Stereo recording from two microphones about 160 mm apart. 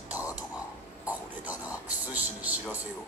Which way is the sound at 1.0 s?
10° right (ahead or behind).